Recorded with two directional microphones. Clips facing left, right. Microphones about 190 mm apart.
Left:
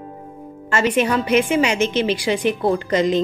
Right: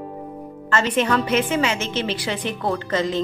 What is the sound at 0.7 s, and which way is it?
A woman's voice, 10° left (ahead or behind).